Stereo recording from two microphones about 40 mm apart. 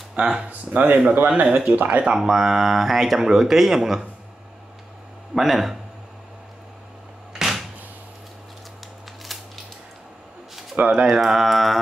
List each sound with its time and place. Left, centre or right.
0.1 s speech: right
0.5 s speech: right
1.5 s speech: right
1.8 s speech: right
2.1 s speech: centre
5.3 s mantra: centre
7.3 s door: centre
9.3 s a sound: centre
10.8 s speech: right
11.2 s mantra: centre